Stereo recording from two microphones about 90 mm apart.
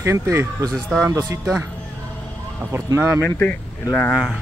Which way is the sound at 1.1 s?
35° right (ahead or behind).